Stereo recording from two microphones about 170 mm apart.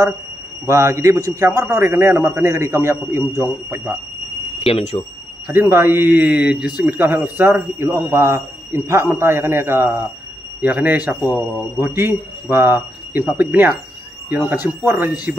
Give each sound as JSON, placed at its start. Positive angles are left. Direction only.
{"t": 0.7, "sound": "a man's voice", "side_deg": -15}
{"t": 4.6, "sound": "speech", "side_deg": 35}
{"t": 5.5, "sound": "a man's voice", "side_deg": -15}